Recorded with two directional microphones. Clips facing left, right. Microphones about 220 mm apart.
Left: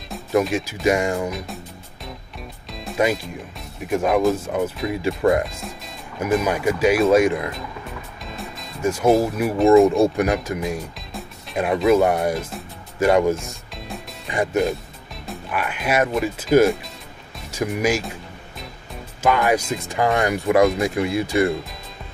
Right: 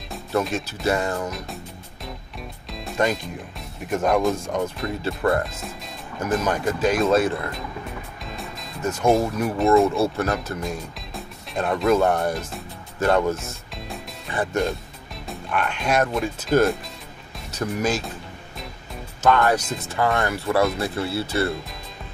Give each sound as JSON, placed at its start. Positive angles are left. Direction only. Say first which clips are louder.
{"t": 0.4, "sound": "speech", "louder": "left 4 dB", "side_deg": 10}
{"t": 2.7, "sound": "speech", "louder": "left 2 dB", "side_deg": 5}
{"t": 5.4, "sound": "speech", "louder": "left 2 dB", "side_deg": 0}
{"t": 9.8, "sound": "speech", "louder": "left 4 dB", "side_deg": 15}
{"t": 19.2, "sound": "speech", "louder": "even", "side_deg": 10}